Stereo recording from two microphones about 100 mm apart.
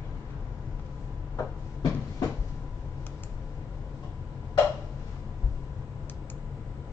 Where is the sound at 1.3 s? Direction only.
35° left (ahead or behind).